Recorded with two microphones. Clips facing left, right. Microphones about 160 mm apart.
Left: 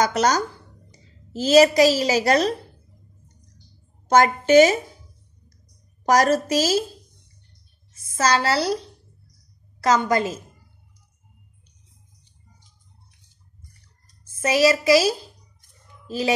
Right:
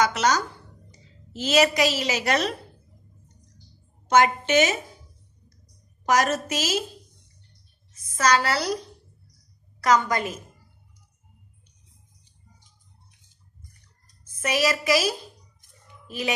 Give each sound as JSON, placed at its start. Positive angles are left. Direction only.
{"t": 0.0, "sound": "a woman's voice", "side_deg": 40}
{"t": 4.1, "sound": "a woman's voice", "side_deg": 40}
{"t": 6.0, "sound": "a woman's voice", "side_deg": 35}
{"t": 8.2, "sound": "a woman's voice", "side_deg": 30}
{"t": 14.4, "sound": "a woman's voice", "side_deg": 30}